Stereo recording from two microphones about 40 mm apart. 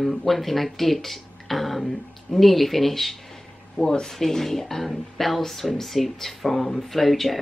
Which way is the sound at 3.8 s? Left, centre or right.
Centre.